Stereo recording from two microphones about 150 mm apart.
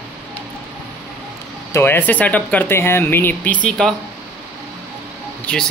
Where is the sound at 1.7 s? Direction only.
15° left (ahead or behind).